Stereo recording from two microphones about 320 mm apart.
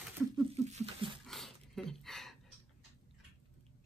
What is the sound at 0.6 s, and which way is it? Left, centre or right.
Patter, centre.